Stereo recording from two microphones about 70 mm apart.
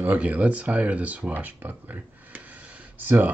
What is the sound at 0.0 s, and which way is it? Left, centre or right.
Speech, right.